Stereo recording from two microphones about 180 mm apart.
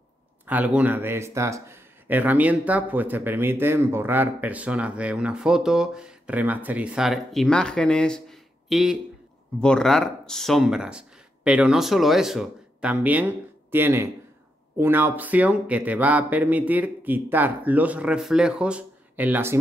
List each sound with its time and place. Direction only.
0.5 s speech: 10° right (ahead or behind)